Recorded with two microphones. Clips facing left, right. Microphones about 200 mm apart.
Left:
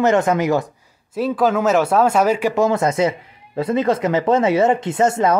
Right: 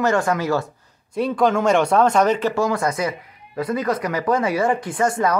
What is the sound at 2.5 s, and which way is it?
Speech, 20° left (ahead or behind).